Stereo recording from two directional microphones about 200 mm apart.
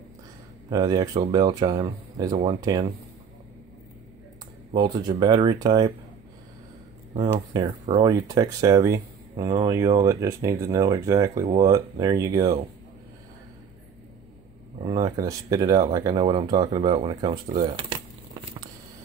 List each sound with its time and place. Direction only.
0.7 s speech: 20° right (ahead or behind)
4.7 s speech: 20° right (ahead or behind)
7.2 s speech: 25° right (ahead or behind)
7.6 s speech: 35° right (ahead or behind)
8.0 s speech: 15° right (ahead or behind)
14.8 s speech: 25° right (ahead or behind)
17.6 s a sound: 25° right (ahead or behind)